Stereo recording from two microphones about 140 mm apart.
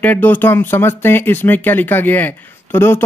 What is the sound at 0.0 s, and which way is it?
Speech, 10° left (ahead or behind).